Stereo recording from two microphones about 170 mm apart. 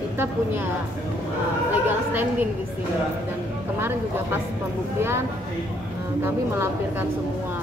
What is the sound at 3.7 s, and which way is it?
A woman's voice, 10° right (ahead or behind).